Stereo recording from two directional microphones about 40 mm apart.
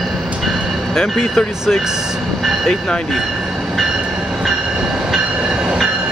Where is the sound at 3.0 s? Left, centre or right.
Centre.